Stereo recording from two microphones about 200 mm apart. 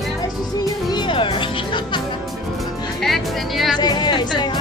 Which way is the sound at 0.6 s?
20° left (ahead or behind).